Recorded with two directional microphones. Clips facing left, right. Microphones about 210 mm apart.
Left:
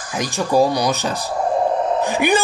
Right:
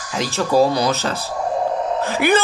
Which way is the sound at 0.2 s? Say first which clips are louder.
Right 1 dB; 15° left (ahead or behind).